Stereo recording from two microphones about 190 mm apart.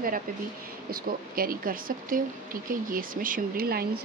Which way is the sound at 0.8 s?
50° right (ahead or behind).